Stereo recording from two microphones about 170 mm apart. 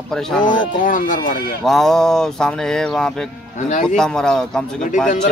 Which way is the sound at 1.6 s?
Centre (ahead or behind).